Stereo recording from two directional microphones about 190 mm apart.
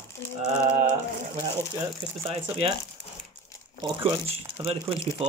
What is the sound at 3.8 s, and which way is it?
Speech, 25° right (ahead or behind).